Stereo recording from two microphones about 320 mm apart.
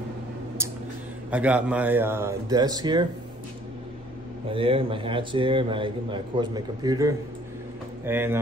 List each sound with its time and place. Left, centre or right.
1.3 s a man's voice: centre
4.5 s a man's voice: centre